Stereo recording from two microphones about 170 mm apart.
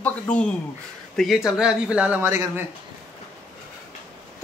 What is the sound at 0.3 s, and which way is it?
A man's voice, 5° left (ahead or behind).